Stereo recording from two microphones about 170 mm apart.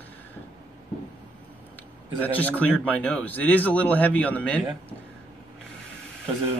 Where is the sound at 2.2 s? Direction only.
10° left (ahead or behind).